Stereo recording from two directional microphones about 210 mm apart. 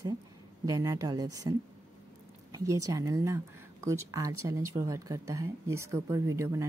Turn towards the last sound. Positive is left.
turn(degrees=-15)  # may be behind; listen again after turning